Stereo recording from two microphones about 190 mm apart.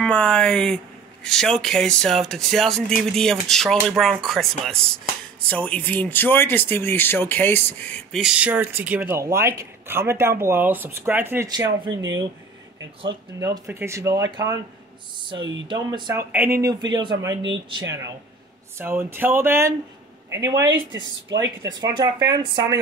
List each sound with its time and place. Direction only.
0.0 s speech: 5° left (ahead or behind); by 11.6 s 15° right (ahead or behind)
11.9 s speech: 80° right
13.4 s speech: 15° right (ahead or behind)
16.3 s speech: 10° right (ahead or behind)
16.8 s speech: 25° right (ahead or behind)
20.7 s speech: 75° right (ahead or behind)
21.7 s speech: 20° right (ahead or behind)